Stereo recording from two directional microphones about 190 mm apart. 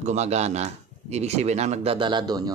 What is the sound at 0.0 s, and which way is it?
A man's voice, 35° right (ahead or behind).